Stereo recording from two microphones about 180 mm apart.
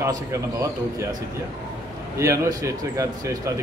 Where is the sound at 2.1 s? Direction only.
15° right (ahead or behind).